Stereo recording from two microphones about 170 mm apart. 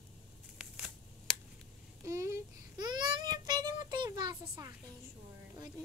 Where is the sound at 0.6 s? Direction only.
Centre (ahead or behind).